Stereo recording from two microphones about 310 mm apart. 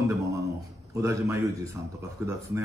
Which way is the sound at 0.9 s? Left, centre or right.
Centre.